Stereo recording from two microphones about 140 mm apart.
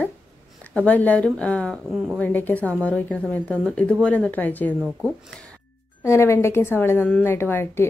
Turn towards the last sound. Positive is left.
turn(degrees=15)  # may be behind; listen again after turning